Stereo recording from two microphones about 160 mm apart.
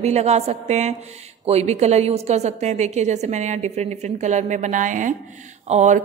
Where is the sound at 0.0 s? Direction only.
45° right (ahead or behind).